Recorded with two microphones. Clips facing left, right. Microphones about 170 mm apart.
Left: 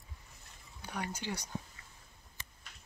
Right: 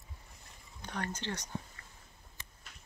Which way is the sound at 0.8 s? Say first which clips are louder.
Right 1 dB; 10° left (ahead or behind).